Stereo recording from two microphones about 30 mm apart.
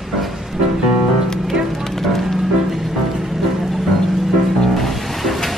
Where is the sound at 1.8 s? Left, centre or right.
Centre.